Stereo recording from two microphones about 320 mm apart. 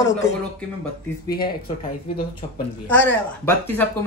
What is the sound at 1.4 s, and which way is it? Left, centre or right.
Speech, left.